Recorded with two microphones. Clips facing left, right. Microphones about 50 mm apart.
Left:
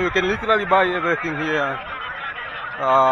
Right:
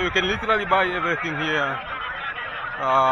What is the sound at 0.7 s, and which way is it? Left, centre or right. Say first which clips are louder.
Speech: left 4 dB; left.